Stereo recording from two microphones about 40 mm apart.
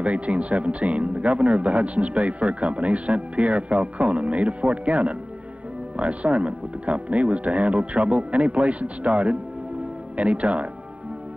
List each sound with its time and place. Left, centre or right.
0.0 s speech: right